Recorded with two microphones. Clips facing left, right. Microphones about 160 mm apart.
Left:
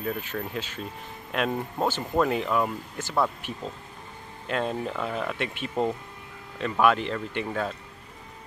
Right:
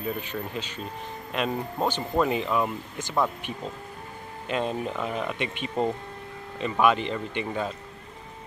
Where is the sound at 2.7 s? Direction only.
20° right (ahead or behind).